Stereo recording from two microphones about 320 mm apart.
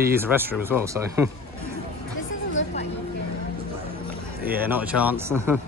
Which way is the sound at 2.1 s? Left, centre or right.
Left.